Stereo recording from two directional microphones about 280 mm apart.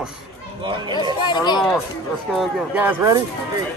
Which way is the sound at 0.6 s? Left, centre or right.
Centre.